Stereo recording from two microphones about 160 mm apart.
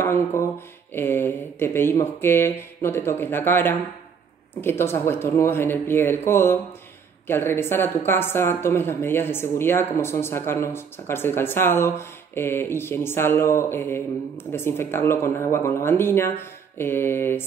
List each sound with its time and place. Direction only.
0.0 s speech: 15° left (ahead or behind)